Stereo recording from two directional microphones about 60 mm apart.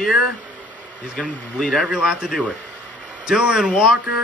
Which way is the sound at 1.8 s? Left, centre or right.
Centre.